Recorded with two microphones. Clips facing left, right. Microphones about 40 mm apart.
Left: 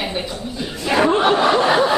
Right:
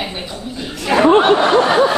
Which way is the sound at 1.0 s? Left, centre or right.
Right.